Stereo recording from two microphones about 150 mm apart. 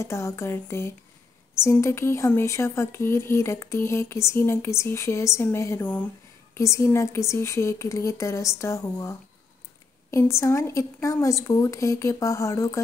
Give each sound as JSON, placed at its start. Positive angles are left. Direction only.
{"t": 0.0, "sound": "speech", "side_deg": 20}
{"t": 10.1, "sound": "speech", "side_deg": 20}